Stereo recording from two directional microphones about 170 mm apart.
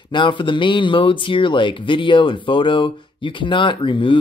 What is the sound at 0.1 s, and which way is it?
Speech, 30° left (ahead or behind).